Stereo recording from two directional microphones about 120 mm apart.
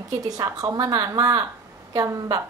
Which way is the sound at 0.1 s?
30° right (ahead or behind).